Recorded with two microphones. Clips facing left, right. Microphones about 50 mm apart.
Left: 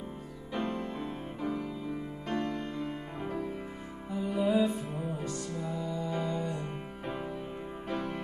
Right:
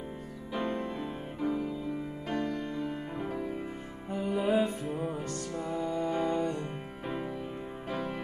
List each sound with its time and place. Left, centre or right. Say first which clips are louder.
0.5 s music: right 1 dB; centre
4.4 s music: left 1 dB; right